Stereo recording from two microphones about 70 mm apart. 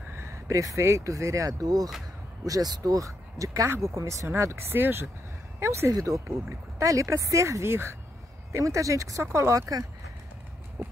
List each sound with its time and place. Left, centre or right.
0.1 s speech: right
5.6 s speech: right
10.8 s clip-clop: right